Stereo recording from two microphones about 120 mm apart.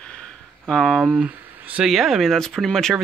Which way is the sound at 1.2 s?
10° right (ahead or behind).